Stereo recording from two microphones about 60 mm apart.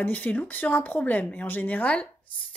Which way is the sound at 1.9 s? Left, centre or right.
Centre.